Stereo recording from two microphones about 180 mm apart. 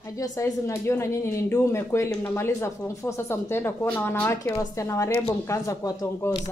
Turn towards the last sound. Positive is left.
turn(degrees=20)  # may be behind; listen again after turning